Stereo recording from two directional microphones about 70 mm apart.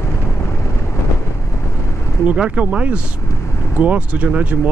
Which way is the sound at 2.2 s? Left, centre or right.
Centre.